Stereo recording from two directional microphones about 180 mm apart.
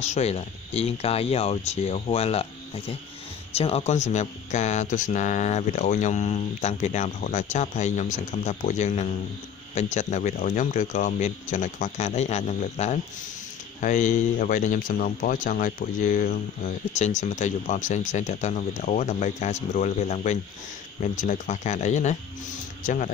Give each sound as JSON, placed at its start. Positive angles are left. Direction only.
{"t": 0.0, "sound": "a man's voice", "side_deg": 35}